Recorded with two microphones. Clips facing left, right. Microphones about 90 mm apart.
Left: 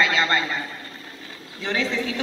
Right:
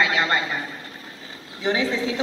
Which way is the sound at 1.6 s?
15° right (ahead or behind).